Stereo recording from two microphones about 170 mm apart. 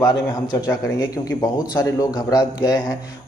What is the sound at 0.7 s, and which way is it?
A man's voice, 20° left (ahead or behind).